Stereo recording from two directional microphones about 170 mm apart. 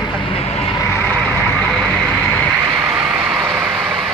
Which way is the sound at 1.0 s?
5° left (ahead or behind).